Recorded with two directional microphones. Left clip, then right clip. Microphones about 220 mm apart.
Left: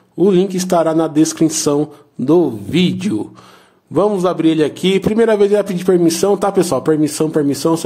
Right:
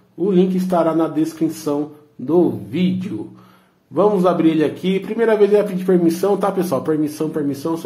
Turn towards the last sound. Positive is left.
turn(degrees=35)  # may be behind; listen again after turning